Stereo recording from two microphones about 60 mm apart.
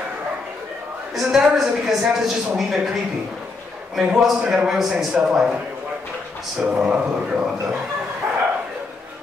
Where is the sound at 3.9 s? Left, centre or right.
Centre.